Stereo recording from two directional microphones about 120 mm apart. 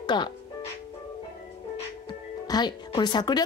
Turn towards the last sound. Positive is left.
turn(degrees=35)  # may be behind; listen again after turning